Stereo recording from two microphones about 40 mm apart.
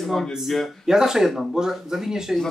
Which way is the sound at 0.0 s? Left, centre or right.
Centre.